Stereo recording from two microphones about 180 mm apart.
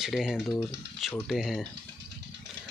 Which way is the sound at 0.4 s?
10° left (ahead or behind).